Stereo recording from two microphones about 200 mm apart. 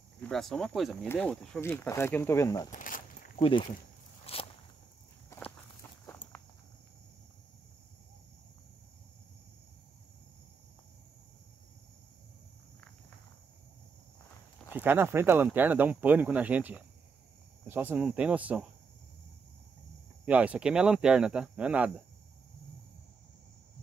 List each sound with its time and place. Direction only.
0.3 s speech: centre (ahead or behind)
2.7 s walk: 40° left (ahead or behind)
3.4 s speech: 25° left (ahead or behind)
4.3 s walk: 30° left (ahead or behind)
5.3 s walk: 10° left (ahead or behind)
14.7 s speech: 10° right (ahead or behind)
20.2 s speech: 5° right (ahead or behind)